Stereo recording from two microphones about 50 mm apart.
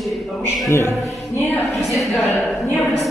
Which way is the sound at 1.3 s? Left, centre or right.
Left.